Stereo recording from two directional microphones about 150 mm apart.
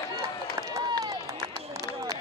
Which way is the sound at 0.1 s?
25° right (ahead or behind).